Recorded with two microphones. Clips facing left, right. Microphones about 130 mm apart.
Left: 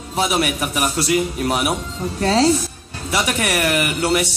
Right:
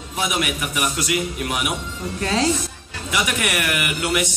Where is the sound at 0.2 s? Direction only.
35° left (ahead or behind).